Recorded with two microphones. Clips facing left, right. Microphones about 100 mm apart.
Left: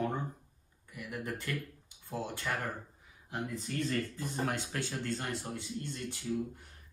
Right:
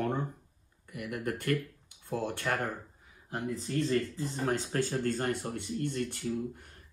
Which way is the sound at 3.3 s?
35° right (ahead or behind).